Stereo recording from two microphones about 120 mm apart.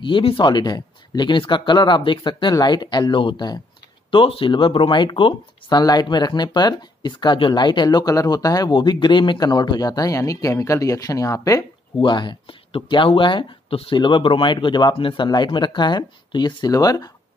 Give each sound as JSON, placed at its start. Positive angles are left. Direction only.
{"t": 0.0, "sound": "speech", "side_deg": 45}
{"t": 12.0, "sound": "speech", "side_deg": 40}